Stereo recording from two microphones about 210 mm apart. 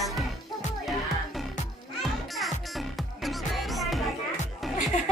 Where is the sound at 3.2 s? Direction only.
Centre (ahead or behind).